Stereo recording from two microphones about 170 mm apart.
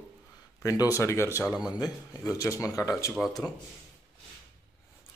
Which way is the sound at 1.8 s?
20° left (ahead or behind).